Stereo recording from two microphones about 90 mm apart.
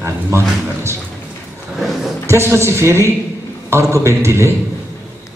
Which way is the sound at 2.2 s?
30° right (ahead or behind).